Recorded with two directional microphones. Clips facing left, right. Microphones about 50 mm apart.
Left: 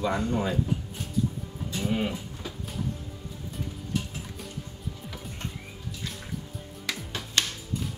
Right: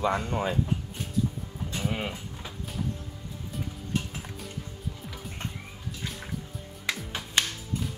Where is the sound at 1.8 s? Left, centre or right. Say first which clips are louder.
Left 4 dB; centre.